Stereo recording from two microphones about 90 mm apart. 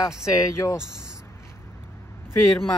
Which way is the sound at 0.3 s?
40° left (ahead or behind).